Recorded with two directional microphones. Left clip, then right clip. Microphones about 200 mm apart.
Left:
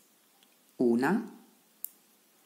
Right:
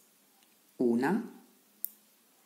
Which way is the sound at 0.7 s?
10° left (ahead or behind).